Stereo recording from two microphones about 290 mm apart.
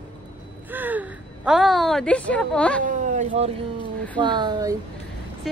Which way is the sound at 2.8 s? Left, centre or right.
Right.